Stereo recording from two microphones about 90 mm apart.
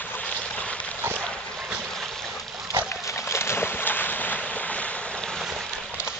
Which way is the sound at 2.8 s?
30° left (ahead or behind).